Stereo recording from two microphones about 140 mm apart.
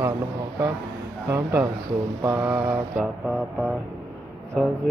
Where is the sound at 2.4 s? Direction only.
10° right (ahead or behind).